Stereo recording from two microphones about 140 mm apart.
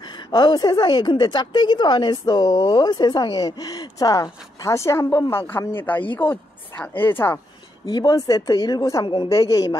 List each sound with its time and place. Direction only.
0.3 s a woman's voice: 30° left (ahead or behind); by 7.3 s 15° left (ahead or behind)
7.8 s speech: 30° left (ahead or behind)
9.3 s a woman's voice: 25° left (ahead or behind)